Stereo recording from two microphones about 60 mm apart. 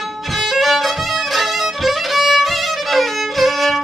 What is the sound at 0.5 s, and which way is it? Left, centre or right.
Violin, centre.